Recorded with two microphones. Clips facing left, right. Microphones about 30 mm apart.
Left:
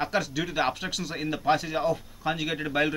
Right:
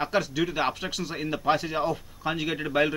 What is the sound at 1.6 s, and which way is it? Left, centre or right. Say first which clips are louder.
Speech: left 1 dB; centre.